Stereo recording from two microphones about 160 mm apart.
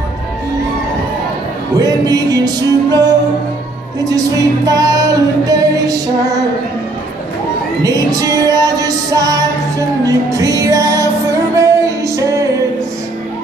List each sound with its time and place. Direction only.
1.8 s music: 25° right (ahead or behind)
4.6 s music: 20° right (ahead or behind)
7.8 s music: 20° right (ahead or behind)